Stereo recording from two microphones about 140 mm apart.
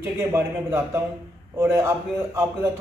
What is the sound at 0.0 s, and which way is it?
A man's voice, 15° right (ahead or behind).